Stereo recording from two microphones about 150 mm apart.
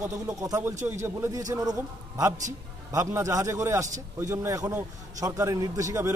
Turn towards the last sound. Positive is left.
turn(degrees=-20)  # may be behind; listen again after turning